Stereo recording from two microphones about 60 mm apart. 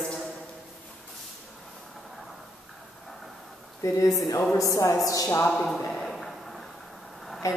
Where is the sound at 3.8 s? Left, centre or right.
Left.